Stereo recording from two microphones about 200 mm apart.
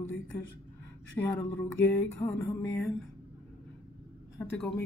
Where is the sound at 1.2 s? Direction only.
10° left (ahead or behind).